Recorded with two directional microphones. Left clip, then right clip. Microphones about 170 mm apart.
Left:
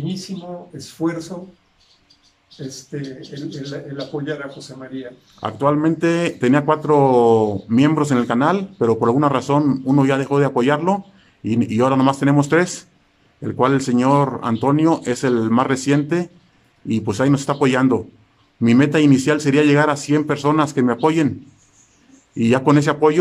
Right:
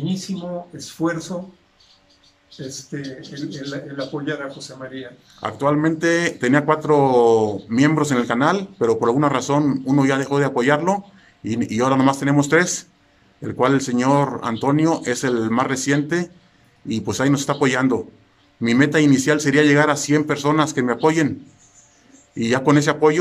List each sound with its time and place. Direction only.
0.7 s speech: centre (ahead or behind)
2.7 s speech: centre (ahead or behind)
22.4 s speech: 5° left (ahead or behind)